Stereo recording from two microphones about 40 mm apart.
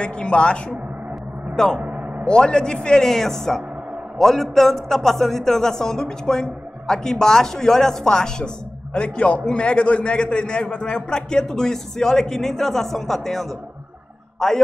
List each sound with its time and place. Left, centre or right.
0.0 s a man's voice: left
1.5 s speech: centre
1.9 s a sound: right
2.2 s a man's voice: left
3.1 s a man's voice: centre
14.4 s a man's voice: centre